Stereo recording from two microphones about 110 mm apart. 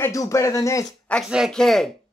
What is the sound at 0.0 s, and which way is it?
Speech, 30° left (ahead or behind).